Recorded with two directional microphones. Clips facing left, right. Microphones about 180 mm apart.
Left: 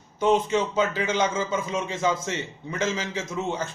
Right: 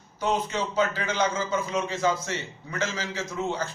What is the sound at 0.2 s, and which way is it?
A man's voice, 25° left (ahead or behind).